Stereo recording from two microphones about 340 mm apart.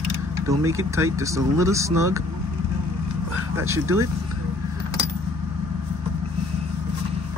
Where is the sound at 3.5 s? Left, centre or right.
Centre.